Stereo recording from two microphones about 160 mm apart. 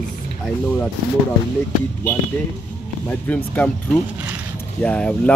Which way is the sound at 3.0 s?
10° left (ahead or behind).